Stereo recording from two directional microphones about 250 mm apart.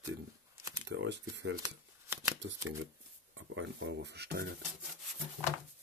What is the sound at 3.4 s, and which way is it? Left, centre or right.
Speech, right.